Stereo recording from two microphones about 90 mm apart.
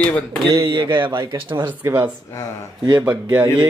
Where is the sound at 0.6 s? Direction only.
65° right (ahead or behind).